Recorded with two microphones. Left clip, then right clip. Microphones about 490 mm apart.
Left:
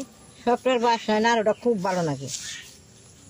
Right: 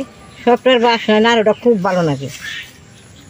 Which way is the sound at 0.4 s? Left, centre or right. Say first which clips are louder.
Right 10 dB; left.